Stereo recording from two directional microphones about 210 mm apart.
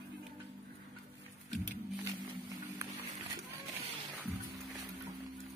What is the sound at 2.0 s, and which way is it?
Music, 15° right (ahead or behind).